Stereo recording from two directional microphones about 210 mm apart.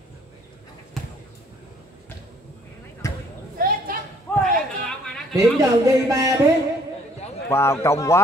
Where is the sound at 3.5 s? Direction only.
45° right (ahead or behind).